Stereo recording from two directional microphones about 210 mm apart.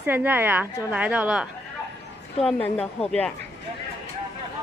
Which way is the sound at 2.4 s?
5° left (ahead or behind).